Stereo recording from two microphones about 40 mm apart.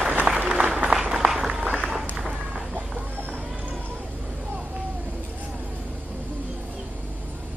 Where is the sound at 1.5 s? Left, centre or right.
Right.